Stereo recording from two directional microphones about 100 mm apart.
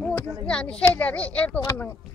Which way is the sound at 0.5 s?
10° left (ahead or behind).